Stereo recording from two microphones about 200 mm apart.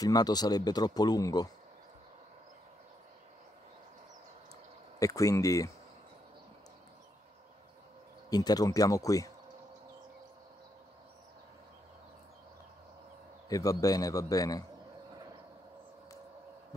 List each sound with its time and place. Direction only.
0.0 s speech: 20° left (ahead or behind)
4.9 s a man's voice: 15° left (ahead or behind)
8.3 s a man's voice: 20° left (ahead or behind)
13.5 s a man's voice: 15° left (ahead or behind)